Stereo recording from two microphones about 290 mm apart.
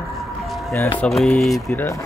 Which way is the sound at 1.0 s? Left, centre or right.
Centre.